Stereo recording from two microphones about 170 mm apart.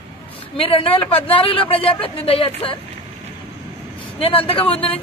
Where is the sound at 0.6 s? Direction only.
35° left (ahead or behind).